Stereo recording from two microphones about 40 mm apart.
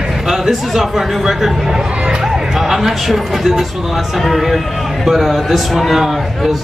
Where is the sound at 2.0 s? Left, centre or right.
Right.